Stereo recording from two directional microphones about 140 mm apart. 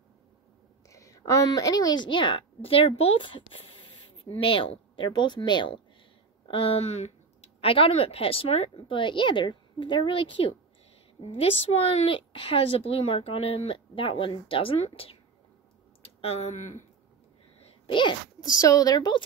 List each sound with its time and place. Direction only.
0.8 s a woman's voice: 25° left (ahead or behind); by 16.8 s 60° left (ahead or behind)
17.8 s a child's voice: 35° left (ahead or behind)